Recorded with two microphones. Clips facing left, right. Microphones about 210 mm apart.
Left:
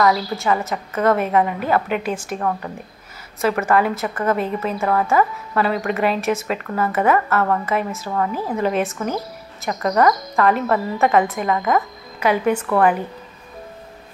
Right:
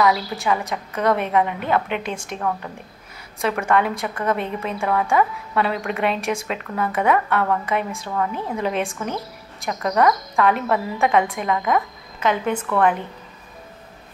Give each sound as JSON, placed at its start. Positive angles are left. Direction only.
{"t": 0.0, "sound": "a woman's voice", "side_deg": 0}